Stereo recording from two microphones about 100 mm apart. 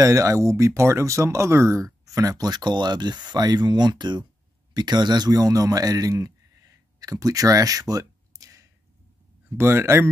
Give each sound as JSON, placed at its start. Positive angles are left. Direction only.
{"t": 0.0, "sound": "a man's voice", "side_deg": -30}